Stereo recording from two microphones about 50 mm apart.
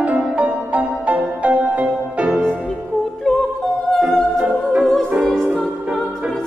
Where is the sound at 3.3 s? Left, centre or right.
Centre.